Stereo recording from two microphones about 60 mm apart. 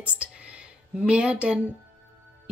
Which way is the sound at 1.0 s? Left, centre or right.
Centre.